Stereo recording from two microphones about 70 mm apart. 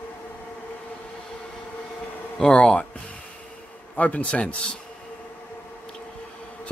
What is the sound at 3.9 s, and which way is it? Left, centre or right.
Speech, left.